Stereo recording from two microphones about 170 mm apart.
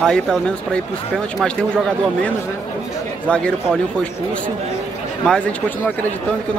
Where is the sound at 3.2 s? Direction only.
5° left (ahead or behind).